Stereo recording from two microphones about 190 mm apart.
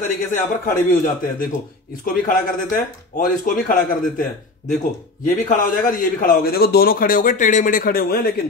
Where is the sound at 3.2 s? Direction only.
45° left (ahead or behind).